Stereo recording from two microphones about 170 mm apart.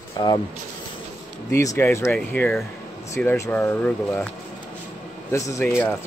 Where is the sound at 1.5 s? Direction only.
15° left (ahead or behind).